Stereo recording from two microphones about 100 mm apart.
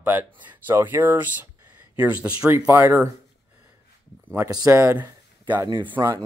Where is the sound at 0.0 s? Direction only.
20° right (ahead or behind).